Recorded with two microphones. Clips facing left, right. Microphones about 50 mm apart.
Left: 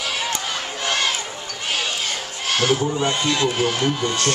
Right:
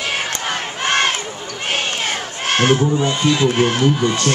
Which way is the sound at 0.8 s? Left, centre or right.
Right.